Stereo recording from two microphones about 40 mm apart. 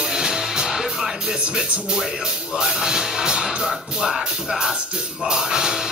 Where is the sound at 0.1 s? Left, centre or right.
Centre.